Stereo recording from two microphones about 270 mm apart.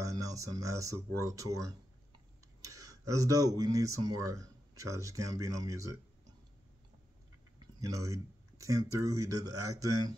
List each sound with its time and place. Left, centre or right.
0.0 s speech: centre
7.5 s speech: centre
9.5 s speech: right